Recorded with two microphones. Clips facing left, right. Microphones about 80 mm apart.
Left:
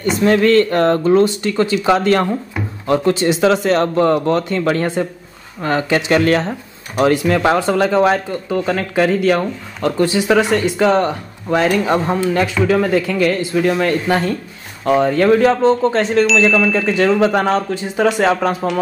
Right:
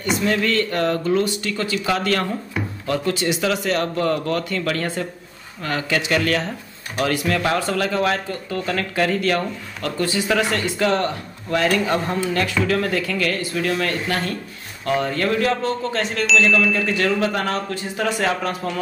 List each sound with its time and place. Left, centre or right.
0.2 s speech: left